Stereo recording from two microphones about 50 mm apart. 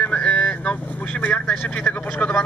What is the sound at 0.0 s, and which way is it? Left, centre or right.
Vehicle, left.